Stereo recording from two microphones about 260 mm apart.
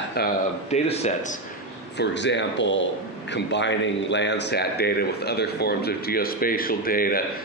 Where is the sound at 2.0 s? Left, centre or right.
Left.